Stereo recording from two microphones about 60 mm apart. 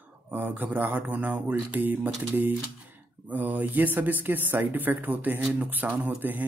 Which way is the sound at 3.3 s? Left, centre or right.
Right.